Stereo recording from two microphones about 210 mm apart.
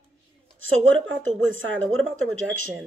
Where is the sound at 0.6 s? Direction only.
70° right (ahead or behind).